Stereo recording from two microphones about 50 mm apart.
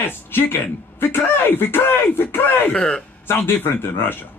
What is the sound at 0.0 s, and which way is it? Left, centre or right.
Speech, left.